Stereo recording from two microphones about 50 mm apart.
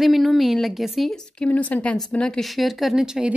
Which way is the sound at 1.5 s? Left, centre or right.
Left.